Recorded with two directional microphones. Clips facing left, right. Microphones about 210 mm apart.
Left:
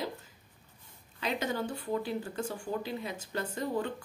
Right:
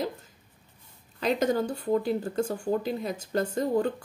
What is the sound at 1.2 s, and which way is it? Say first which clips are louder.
Speech: right 8 dB; 40° right (ahead or behind).